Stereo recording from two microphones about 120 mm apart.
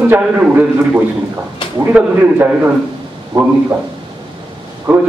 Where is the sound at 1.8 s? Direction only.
20° right (ahead or behind).